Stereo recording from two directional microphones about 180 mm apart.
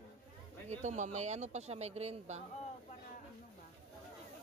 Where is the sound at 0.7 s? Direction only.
40° right (ahead or behind).